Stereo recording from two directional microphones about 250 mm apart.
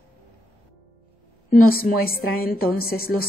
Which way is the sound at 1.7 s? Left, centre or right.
Left.